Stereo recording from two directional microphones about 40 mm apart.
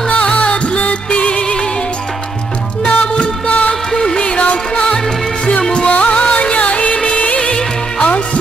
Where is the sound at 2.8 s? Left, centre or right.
Left.